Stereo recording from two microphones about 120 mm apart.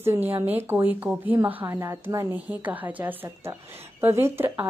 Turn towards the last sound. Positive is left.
turn(degrees=-20)  # may be behind; listen again after turning